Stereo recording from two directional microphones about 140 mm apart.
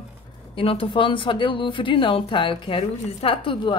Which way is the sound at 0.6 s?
40° left (ahead or behind).